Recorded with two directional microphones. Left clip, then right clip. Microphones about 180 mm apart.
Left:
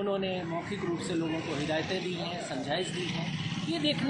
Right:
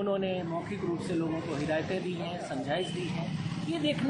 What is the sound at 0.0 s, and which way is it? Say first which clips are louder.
Speech: right 1 dB; centre (ahead or behind).